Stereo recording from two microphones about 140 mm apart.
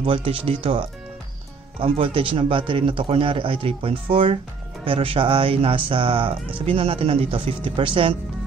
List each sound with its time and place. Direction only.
0.0 s speech: 40° right (ahead or behind)